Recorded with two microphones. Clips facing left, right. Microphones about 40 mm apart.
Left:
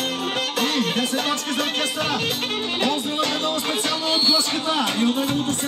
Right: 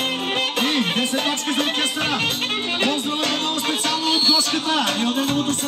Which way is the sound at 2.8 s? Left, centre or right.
Centre.